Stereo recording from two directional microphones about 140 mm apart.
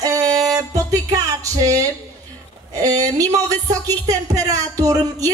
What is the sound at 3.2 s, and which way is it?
Speech, 25° right (ahead or behind).